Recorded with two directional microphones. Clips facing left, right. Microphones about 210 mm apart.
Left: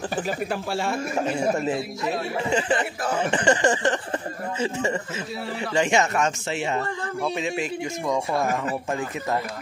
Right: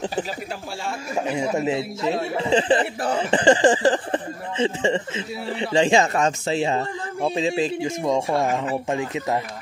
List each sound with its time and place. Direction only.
0.5 s speech: 60° left (ahead or behind)
1.6 s a man's voice: 25° right (ahead or behind)